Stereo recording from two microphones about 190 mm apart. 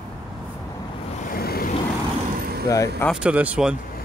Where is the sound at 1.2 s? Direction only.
50° left (ahead or behind).